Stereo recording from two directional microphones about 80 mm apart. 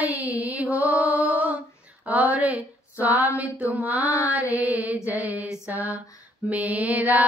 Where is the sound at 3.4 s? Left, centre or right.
Centre.